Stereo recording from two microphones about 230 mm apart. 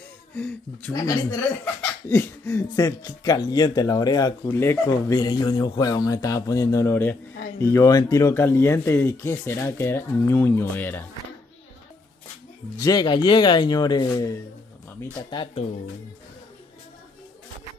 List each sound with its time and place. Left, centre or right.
0.3 s speech: centre
12.8 s speech: centre